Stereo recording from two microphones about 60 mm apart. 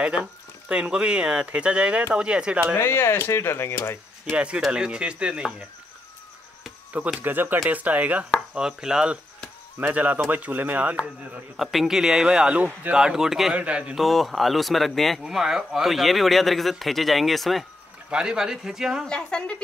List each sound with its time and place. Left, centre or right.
0.0 s speech: centre
2.8 s speech: left
4.6 s speech: centre
7.2 s speech: right
8.5 s speech: centre
9.8 s speech: right
11.5 s speech: centre; by 12.9 s right
12.9 s speech: centre
13.6 s speech: centre
13.9 s a man's voice: centre
15.2 s a man's voice: centre
18.1 s speech: centre
19.0 s a woman's voice: centre